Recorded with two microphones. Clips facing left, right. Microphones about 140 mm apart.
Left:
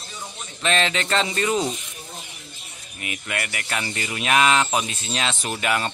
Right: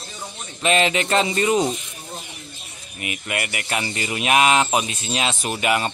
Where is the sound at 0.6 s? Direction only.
15° right (ahead or behind).